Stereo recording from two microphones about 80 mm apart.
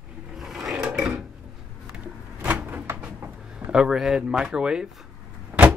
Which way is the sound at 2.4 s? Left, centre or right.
Right.